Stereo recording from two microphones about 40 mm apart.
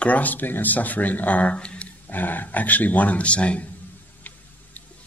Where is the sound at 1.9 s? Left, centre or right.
Left.